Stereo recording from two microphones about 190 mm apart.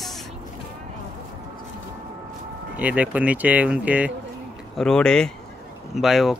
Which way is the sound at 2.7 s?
10° right (ahead or behind).